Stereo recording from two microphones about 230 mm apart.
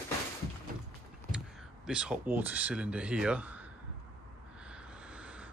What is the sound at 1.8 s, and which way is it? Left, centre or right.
Speech, centre.